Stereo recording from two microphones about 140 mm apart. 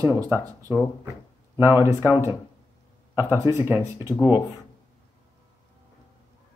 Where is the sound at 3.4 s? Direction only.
20° right (ahead or behind).